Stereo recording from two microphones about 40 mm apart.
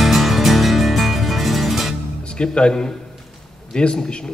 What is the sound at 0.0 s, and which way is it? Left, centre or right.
Music, centre.